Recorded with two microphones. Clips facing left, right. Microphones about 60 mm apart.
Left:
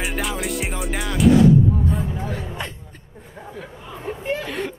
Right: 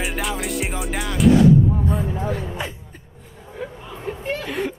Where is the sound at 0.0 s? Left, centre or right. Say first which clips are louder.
Even; centre.